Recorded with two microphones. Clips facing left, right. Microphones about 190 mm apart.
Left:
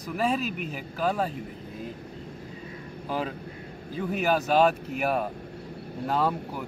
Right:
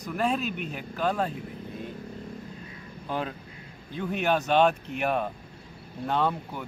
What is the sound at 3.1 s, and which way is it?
Speech, 5° left (ahead or behind).